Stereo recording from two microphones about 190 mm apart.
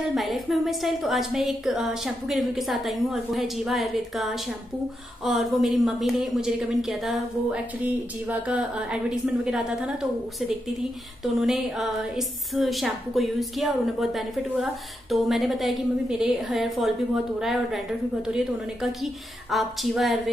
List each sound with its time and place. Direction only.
0.1 s a woman's voice: centre (ahead or behind)
11.4 s a woman's voice: centre (ahead or behind)